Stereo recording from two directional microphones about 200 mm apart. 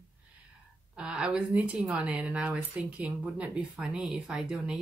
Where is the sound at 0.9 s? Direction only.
5° right (ahead or behind).